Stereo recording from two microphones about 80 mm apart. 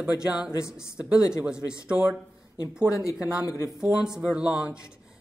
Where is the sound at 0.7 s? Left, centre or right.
Centre.